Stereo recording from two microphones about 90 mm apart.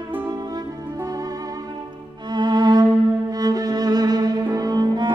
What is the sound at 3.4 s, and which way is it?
Cello, 45° right (ahead or behind).